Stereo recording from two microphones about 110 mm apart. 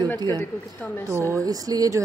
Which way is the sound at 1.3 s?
35° right (ahead or behind).